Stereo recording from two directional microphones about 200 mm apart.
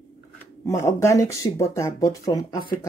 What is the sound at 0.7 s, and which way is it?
Speech, 15° left (ahead or behind).